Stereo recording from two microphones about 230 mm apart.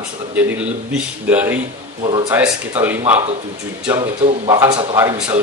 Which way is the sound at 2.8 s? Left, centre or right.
Centre.